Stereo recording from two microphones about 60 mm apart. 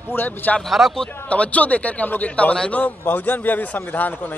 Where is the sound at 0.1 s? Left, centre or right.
Left.